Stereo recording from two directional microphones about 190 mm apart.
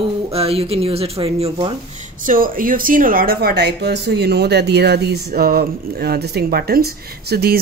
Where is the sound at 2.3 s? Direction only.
45° right (ahead or behind).